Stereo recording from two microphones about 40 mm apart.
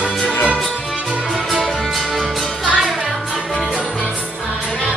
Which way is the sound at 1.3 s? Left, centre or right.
Centre.